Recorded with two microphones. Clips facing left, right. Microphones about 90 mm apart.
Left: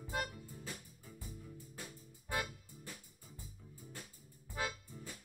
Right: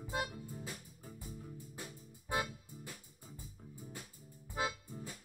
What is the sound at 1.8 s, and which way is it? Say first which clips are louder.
Music: right 2 dB; 20° right (ahead or behind).